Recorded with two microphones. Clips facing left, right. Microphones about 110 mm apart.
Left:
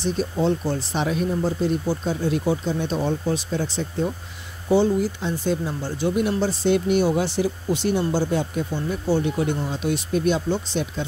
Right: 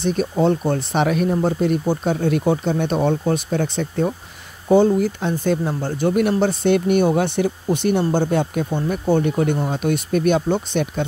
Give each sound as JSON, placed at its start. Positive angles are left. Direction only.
{"t": 0.0, "sound": "speech", "side_deg": -55}